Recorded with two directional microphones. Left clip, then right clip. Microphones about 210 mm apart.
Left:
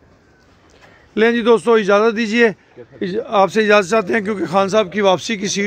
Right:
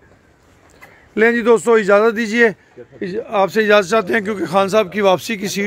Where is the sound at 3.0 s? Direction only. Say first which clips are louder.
Left 2 dB; 15° left (ahead or behind); by 5.6 s centre (ahead or behind).